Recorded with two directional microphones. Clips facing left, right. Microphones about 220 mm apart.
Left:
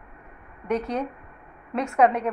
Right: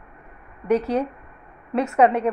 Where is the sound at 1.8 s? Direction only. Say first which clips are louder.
Right 3 dB; 5° right (ahead or behind).